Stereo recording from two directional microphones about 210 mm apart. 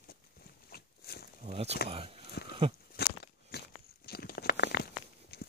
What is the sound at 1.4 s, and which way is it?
Speech, 30° right (ahead or behind).